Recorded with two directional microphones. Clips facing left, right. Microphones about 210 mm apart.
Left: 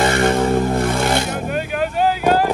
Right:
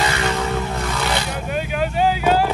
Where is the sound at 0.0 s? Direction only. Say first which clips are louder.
Left 6 dB; 50° left (ahead or behind).